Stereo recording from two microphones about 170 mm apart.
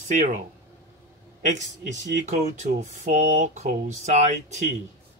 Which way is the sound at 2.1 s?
45° right (ahead or behind).